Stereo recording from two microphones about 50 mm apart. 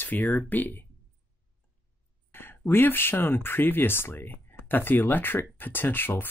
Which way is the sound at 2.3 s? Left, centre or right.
Left.